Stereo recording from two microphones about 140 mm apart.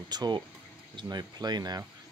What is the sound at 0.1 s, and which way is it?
Speech, 30° right (ahead or behind).